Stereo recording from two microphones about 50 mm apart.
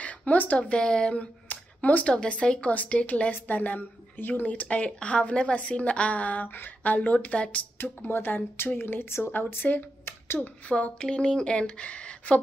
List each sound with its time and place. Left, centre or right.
0.0 s speech: left
1.1 s a sound: left
2.0 s speech: left
3.3 s speech: left
7.8 s speech: left
10.0 s a sound: left
10.4 s speech: left